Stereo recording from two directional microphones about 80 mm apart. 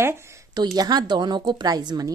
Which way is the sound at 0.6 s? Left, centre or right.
Right.